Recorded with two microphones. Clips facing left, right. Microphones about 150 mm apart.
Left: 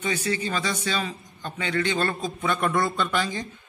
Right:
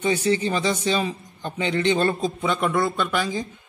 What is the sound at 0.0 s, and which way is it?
A man's voice, 25° right (ahead or behind).